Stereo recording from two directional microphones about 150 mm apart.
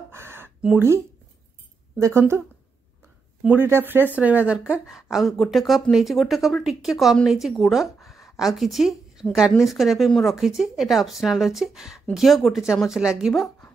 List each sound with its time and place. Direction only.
0.1 s a sound: 15° right (ahead or behind)
2.0 s speech: 15° right (ahead or behind)
3.4 s speech: 15° right (ahead or behind); by 13.7 s centre (ahead or behind)